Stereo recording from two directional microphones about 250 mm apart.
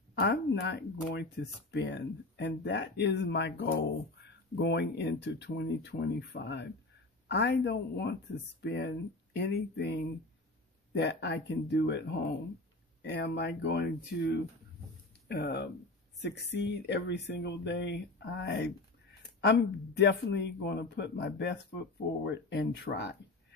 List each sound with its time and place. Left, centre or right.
0.1 s speech: left